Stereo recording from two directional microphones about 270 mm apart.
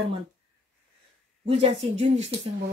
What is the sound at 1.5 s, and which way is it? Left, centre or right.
Speech, right.